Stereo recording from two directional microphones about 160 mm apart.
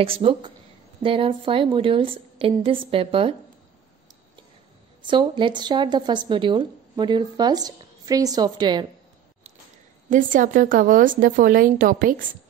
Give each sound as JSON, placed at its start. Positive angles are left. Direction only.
{"t": 0.0, "sound": "a woman's voice", "side_deg": -35}
{"t": 5.0, "sound": "speech", "side_deg": -30}
{"t": 10.0, "sound": "speech", "side_deg": -55}